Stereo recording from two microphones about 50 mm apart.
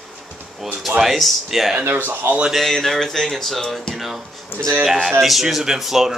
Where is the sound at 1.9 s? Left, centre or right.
Right.